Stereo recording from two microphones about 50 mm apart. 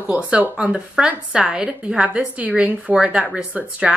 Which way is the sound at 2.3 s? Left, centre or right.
Right.